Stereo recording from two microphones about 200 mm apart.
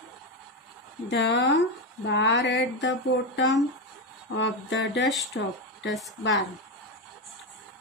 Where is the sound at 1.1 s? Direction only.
65° left (ahead or behind).